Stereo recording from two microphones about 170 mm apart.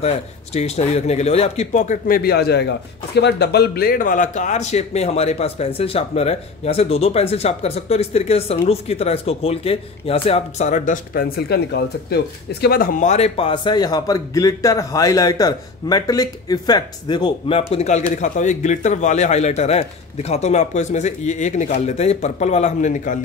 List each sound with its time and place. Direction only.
0.0 s a man's voice: 40° left (ahead or behind); by 13.1 s 60° left (ahead or behind)
13.1 s a man's voice: 35° left (ahead or behind)